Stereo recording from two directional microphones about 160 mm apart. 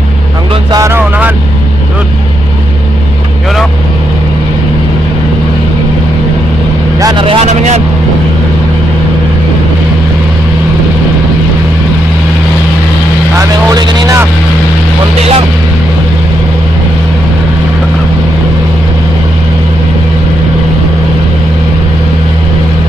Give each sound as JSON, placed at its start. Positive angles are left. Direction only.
{"t": 0.7, "sound": "a sound", "side_deg": -20}
{"t": 7.0, "sound": "vehicle", "side_deg": -25}
{"t": 13.4, "sound": "vehicle", "side_deg": -20}